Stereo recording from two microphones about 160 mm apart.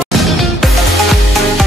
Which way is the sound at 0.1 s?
Centre (ahead or behind).